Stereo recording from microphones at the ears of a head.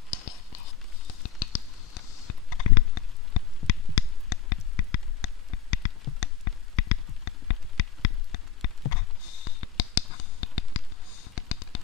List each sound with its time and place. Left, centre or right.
0.1 s whispering: left